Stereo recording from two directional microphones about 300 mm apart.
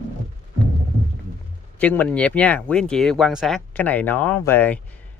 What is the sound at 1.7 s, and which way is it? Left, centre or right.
Speech, centre.